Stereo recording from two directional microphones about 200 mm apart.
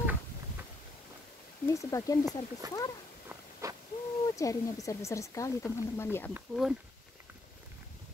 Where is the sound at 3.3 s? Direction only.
15° right (ahead or behind).